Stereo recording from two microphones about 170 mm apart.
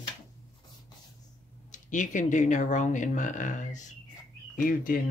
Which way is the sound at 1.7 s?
45° left (ahead or behind).